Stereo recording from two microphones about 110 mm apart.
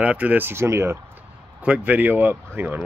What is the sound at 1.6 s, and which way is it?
Speech, 15° right (ahead or behind).